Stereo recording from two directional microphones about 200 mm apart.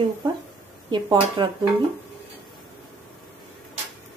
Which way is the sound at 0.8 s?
20° right (ahead or behind).